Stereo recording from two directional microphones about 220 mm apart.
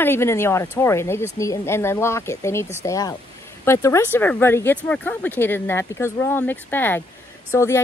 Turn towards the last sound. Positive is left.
turn(degrees=15)  # may be behind; listen again after turning